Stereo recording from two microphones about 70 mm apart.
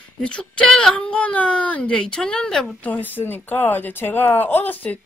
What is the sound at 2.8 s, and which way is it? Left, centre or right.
Speech, left.